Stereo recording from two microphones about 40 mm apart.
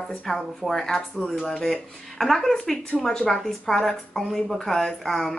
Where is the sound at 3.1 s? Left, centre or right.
Centre.